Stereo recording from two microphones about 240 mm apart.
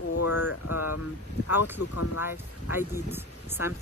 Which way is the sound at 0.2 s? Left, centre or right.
Left.